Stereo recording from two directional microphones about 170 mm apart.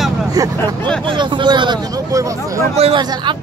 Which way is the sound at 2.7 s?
35° right (ahead or behind).